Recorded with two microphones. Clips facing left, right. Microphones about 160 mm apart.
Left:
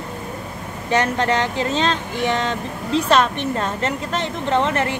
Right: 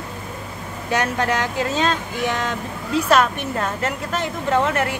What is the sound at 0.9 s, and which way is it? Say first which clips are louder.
Speech: left 2 dB; 10° right (ahead or behind).